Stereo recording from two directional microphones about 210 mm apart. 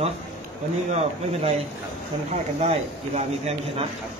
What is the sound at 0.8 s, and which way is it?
Speech, 30° right (ahead or behind).